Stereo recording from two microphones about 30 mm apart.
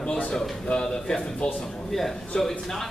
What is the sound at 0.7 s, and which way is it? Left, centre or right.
Speech, left.